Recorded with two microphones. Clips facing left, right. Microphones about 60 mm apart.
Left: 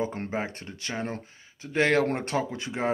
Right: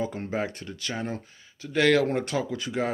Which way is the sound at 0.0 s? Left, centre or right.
Left.